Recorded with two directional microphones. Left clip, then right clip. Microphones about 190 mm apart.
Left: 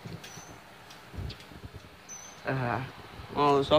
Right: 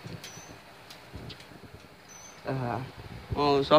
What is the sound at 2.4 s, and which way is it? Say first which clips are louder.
Cricket: left 2 dB; 5° right (ahead or behind).